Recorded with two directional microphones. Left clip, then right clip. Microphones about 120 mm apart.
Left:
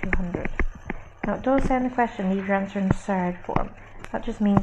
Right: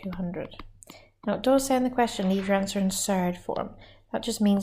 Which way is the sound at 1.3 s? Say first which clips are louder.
Even; 30° right (ahead or behind).